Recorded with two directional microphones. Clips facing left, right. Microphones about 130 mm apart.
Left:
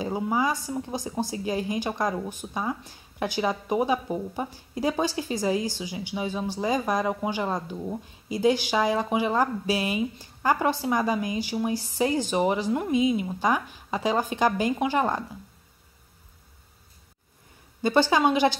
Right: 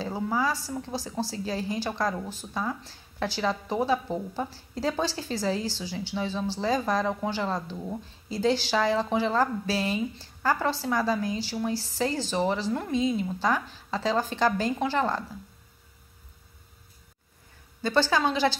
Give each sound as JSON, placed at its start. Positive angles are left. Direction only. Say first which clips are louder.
{"t": 0.0, "sound": "a woman's voice", "louder": "left 2 dB", "side_deg": 15}
{"t": 17.8, "sound": "a woman's voice", "louder": "left 3 dB", "side_deg": 15}